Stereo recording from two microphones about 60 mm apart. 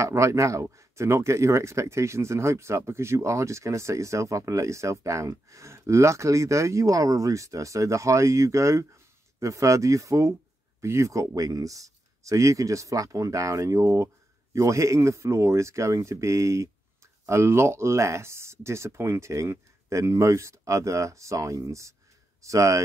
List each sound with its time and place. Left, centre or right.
0.0 s speech: right
17.3 s speech: right